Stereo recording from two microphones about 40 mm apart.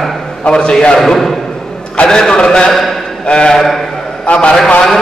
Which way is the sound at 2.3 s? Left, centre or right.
Left.